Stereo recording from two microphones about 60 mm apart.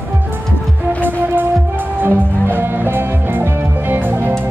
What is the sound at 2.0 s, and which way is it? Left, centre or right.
Music, right.